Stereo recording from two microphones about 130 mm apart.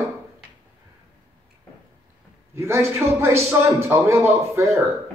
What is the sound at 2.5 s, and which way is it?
A man's voice, 20° right (ahead or behind).